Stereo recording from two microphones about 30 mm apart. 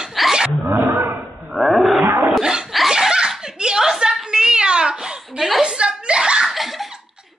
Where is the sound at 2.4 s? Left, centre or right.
Right.